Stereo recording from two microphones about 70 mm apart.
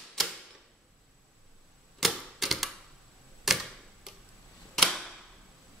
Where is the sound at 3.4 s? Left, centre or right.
Centre.